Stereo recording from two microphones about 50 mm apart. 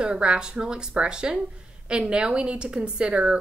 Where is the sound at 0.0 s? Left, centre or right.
Centre.